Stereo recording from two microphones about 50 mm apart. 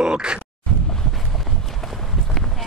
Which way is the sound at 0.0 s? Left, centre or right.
Centre.